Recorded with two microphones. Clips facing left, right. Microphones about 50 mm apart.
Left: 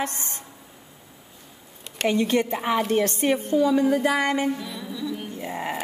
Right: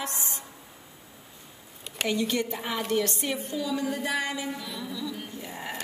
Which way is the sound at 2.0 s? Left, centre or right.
Left.